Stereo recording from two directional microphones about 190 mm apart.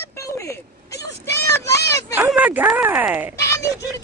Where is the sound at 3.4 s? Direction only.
15° left (ahead or behind).